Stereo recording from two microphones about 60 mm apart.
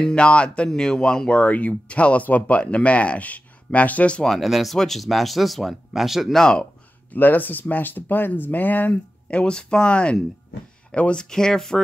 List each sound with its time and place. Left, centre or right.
0.0 s speech: centre
4.2 s speech: centre
7.1 s speech: left; by 11.8 s centre